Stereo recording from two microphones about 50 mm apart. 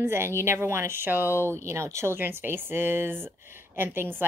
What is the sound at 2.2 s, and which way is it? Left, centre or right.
Speech, right.